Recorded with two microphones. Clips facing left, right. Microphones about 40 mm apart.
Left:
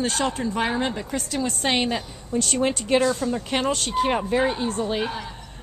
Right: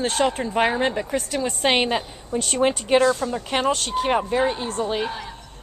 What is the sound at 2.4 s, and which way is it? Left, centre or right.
Speech, centre.